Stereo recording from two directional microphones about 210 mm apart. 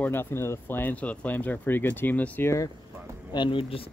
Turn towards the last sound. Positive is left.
turn(degrees=25)  # may be behind; listen again after turning